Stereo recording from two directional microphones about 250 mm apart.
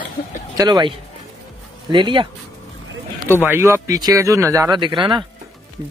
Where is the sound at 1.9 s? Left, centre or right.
Centre.